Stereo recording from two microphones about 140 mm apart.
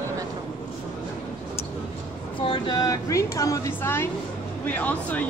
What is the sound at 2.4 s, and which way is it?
A woman's voice, 35° left (ahead or behind).